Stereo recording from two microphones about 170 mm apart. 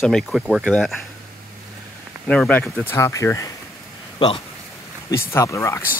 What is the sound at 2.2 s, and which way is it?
Speech, 5° left (ahead or behind).